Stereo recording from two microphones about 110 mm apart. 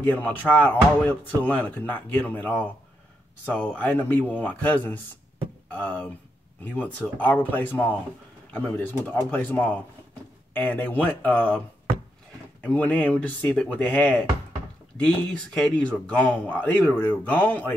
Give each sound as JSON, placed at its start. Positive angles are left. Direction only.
{"t": 0.0, "sound": "speech", "side_deg": 15}
{"t": 12.6, "sound": "speech", "side_deg": 10}